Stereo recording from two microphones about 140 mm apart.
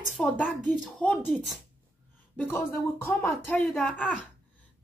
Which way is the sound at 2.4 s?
15° left (ahead or behind).